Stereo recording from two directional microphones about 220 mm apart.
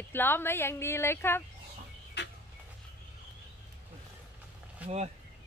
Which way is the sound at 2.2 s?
50° left (ahead or behind).